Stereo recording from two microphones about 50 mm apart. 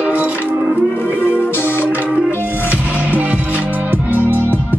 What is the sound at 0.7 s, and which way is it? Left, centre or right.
Music, left.